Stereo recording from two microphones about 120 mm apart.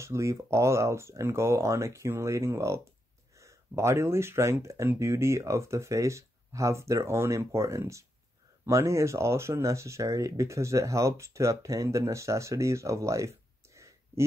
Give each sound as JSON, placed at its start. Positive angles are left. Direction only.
{"t": 0.0, "sound": "speech", "side_deg": -25}